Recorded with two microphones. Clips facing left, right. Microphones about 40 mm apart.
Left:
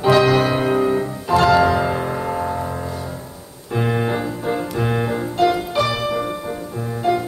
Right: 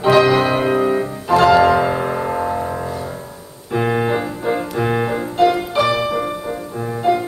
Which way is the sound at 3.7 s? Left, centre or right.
Centre.